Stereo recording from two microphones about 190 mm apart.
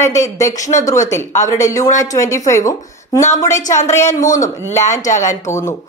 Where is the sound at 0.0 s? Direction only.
15° left (ahead or behind).